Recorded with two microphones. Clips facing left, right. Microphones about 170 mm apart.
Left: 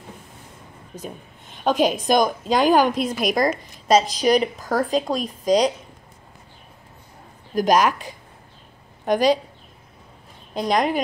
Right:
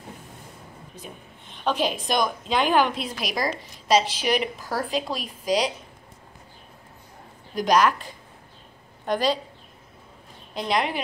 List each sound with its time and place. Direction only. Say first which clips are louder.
0.9 s a woman's voice: left 9 dB; 40° left (ahead or behind)
5.4 s a woman's voice: left 6 dB; 5° right (ahead or behind)
7.5 s a woman's voice: left 2 dB; 45° left (ahead or behind)
10.5 s a woman's voice: left 5 dB; 45° left (ahead or behind)